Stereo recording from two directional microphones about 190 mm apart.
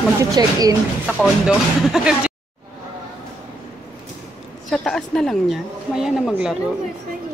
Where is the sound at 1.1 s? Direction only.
5° right (ahead or behind).